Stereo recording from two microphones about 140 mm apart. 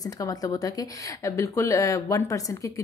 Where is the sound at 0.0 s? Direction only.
25° left (ahead or behind).